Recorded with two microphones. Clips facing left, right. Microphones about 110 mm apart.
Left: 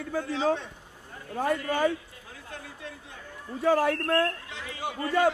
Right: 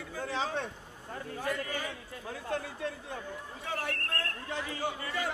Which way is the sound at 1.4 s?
50° left (ahead or behind).